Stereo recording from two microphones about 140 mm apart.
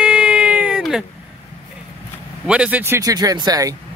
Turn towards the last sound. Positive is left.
turn(degrees=-25)  # may be behind; listen again after turning